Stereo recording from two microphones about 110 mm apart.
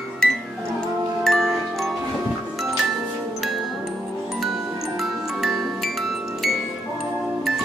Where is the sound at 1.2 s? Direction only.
Centre (ahead or behind).